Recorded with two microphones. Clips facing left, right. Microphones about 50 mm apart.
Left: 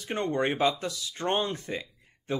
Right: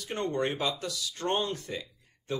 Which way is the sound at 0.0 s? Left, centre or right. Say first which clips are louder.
Left 2 dB; left.